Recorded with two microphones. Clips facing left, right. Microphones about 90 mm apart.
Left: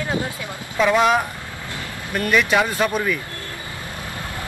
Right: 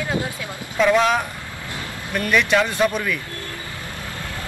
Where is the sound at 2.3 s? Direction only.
10° left (ahead or behind).